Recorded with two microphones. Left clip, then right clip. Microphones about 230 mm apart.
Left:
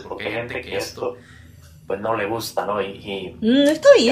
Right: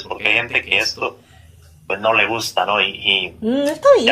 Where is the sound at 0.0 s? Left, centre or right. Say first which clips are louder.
Right 9 dB; centre.